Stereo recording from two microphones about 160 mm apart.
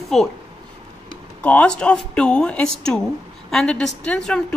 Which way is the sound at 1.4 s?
5° left (ahead or behind).